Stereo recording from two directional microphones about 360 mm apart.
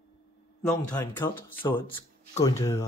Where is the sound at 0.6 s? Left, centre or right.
Centre.